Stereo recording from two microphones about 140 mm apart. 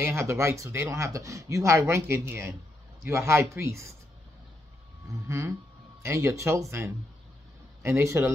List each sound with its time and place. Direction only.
0.0 s speech: 20° right (ahead or behind)
5.3 s speech: 20° right (ahead or behind)
8.0 s speech: 20° right (ahead or behind)